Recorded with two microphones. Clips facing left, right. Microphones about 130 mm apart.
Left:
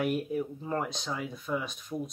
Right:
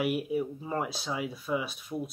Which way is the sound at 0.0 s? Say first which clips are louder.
Right 1 dB; 10° right (ahead or behind).